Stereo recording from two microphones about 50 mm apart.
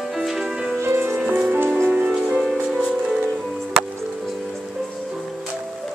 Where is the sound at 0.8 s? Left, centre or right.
Right.